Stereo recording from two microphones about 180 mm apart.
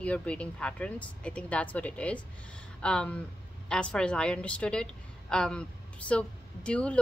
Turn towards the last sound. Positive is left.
turn(degrees=5)  # may be behind; listen again after turning